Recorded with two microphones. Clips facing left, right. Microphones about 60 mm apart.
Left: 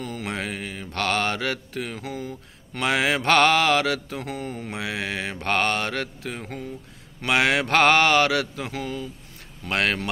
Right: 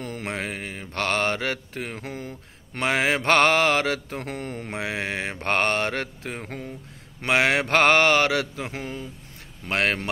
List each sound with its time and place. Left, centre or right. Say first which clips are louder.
0.0 s mantra: left 1 dB; right
0.3 s mantra: even; right
2.0 s speech: left 2 dB; right
2.8 s mantra: even; right
4.2 s mantra: left 1 dB; right
4.6 s mantra: right 2 dB; right
8.7 s speech: left 3 dB; right
9.7 s mantra: even; right